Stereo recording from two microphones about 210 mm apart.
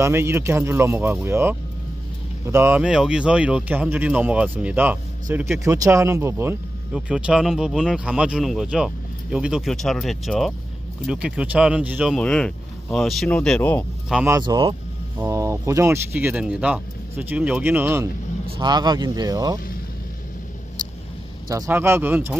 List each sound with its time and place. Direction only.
0.0 s speech: 10° right (ahead or behind)
14.3 s speech: 20° right (ahead or behind)
21.5 s speech: 15° right (ahead or behind)